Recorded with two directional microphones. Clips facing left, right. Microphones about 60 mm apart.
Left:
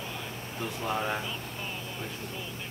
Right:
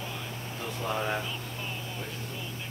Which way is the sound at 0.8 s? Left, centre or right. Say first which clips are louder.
Even; centre.